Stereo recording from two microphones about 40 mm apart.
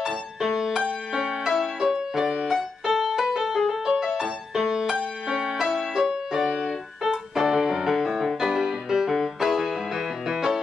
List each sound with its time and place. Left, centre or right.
0.0 s music: centre
5.6 s music: centre
7.0 s piano: centre
8.4 s music: centre